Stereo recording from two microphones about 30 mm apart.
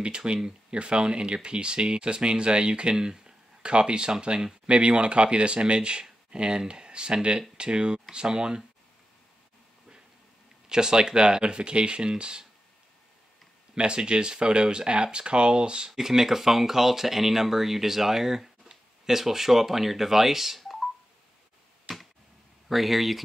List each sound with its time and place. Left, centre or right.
0.0 s speech: right
10.7 s speech: right
13.7 s speech: right
15.9 s speech: centre
20.6 s telephone dialing: centre
22.7 s speech: centre